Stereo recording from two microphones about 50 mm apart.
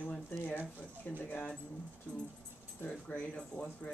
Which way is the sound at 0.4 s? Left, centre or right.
Left.